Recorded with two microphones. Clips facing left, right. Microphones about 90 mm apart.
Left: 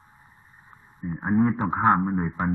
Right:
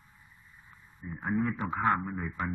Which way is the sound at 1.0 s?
30° left (ahead or behind).